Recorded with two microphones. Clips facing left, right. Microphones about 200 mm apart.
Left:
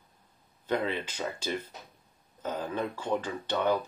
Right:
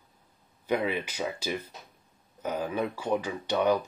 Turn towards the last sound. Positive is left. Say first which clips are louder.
# right 3 dB
turn(degrees=-10)  # may be behind; listen again after turning